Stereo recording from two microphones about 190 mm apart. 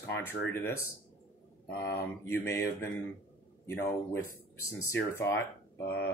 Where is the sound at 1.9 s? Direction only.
15° left (ahead or behind).